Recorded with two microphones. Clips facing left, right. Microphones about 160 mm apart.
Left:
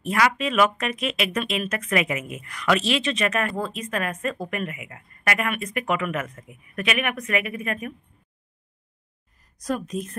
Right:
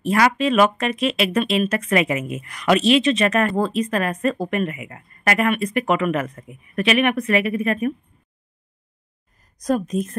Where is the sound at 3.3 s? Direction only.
35° right (ahead or behind).